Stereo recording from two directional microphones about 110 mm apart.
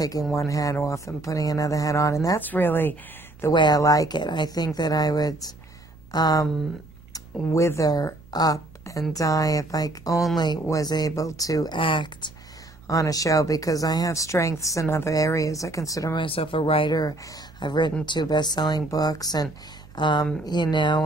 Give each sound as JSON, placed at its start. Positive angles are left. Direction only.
{"t": 0.3, "sound": "speech", "side_deg": 30}
{"t": 2.4, "sound": "speech", "side_deg": 15}
{"t": 3.5, "sound": "speech", "side_deg": 40}
{"t": 7.4, "sound": "speech", "side_deg": 25}
{"t": 11.8, "sound": "speech", "side_deg": 45}
{"t": 12.8, "sound": "speech", "side_deg": 30}
{"t": 16.2, "sound": "speech", "side_deg": 55}
{"t": 16.9, "sound": "speech", "side_deg": 35}